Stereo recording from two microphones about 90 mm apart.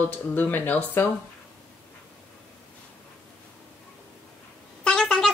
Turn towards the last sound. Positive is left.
turn(degrees=5)  # may be behind; listen again after turning